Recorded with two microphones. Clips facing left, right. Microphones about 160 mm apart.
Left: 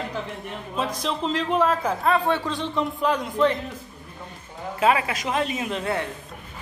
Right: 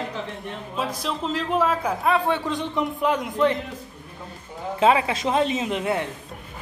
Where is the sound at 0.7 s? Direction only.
5° right (ahead or behind).